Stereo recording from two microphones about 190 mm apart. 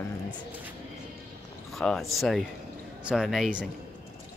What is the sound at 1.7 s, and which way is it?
Speech, centre (ahead or behind).